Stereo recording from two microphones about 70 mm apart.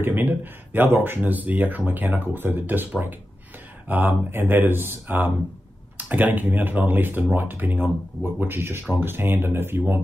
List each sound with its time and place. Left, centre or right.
0.0 s speech: right
3.9 s speech: right